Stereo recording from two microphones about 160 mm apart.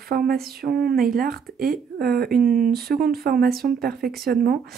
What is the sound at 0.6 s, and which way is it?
Speech, 70° right (ahead or behind).